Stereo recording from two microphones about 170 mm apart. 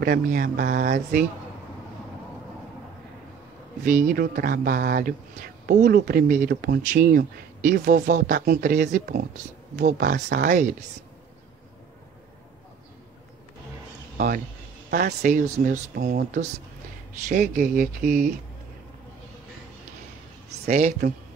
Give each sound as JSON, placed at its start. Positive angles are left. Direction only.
{"t": 0.0, "sound": "speech", "side_deg": -60}
{"t": 3.8, "sound": "speech", "side_deg": -50}
{"t": 14.1, "sound": "speech", "side_deg": -55}
{"t": 17.3, "sound": "speech", "side_deg": -50}
{"t": 20.6, "sound": "speech", "side_deg": -45}